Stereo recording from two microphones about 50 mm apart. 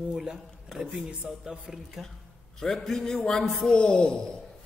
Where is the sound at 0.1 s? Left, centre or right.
Centre.